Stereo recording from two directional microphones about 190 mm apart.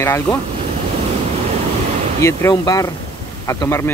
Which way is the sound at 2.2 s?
15° left (ahead or behind).